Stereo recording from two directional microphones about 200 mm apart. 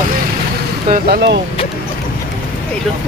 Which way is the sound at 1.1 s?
55° right (ahead or behind).